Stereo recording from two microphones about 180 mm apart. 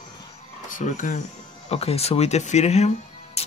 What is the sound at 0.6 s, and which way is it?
Speech, 45° left (ahead or behind).